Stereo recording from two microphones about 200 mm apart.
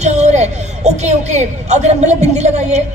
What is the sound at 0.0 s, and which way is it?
A woman's voice, 35° right (ahead or behind).